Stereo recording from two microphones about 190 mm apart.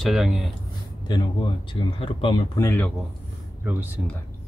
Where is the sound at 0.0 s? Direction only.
Centre (ahead or behind).